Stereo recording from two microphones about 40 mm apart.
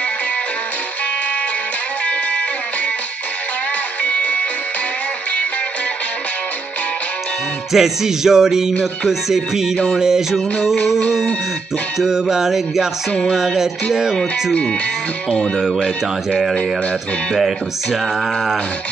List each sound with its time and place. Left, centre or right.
4.0 s music: left
7.7 s a sound: centre
16.3 s speech: centre